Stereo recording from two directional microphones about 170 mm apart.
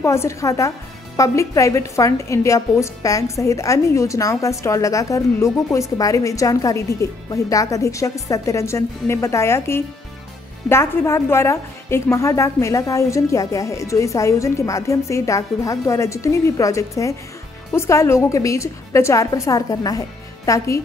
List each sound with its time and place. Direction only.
0.0 s a woman's voice: 15° left (ahead or behind)